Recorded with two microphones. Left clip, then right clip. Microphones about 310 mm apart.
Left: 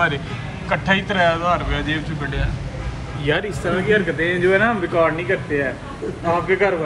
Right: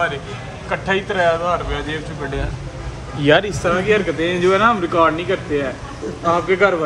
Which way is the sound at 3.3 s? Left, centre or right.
Right.